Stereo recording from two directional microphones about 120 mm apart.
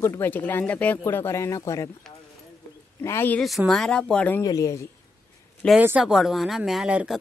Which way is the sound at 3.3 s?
Centre (ahead or behind).